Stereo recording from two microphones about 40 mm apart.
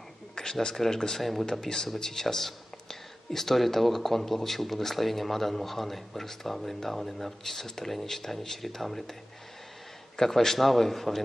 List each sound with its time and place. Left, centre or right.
0.4 s speech: centre
10.1 s speech: centre